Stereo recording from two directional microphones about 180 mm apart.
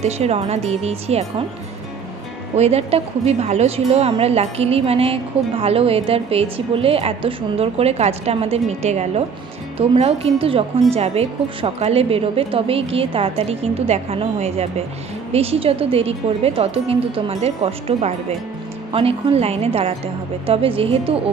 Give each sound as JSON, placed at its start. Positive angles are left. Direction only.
{"t": 0.0, "sound": "a woman's voice", "side_deg": -35}
{"t": 2.5, "sound": "a woman's voice", "side_deg": -35}